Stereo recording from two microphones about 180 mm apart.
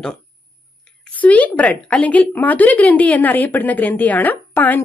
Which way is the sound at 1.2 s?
10° left (ahead or behind).